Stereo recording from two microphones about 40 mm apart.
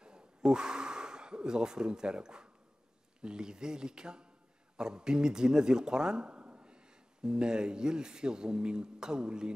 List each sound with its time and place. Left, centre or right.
0.0 s gasp: right
3.2 s speech: right